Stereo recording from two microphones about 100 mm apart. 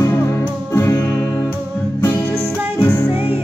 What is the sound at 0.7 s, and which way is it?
Music, 30° left (ahead or behind).